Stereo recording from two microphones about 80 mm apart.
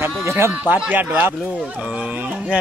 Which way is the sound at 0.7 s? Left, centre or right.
Centre.